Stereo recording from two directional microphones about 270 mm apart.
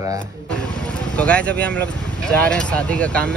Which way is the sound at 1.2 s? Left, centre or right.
Centre.